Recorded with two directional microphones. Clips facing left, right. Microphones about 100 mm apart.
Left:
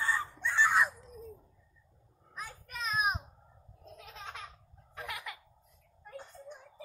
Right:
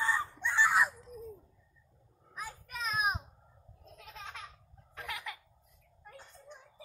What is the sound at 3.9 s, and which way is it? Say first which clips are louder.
Laughter: left 1 dB; 10° left (ahead or behind).